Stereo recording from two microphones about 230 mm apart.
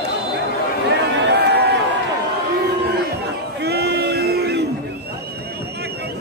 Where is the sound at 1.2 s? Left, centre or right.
Right.